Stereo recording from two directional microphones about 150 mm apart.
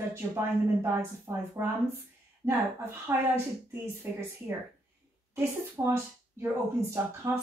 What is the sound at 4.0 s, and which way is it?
Speech, 15° right (ahead or behind).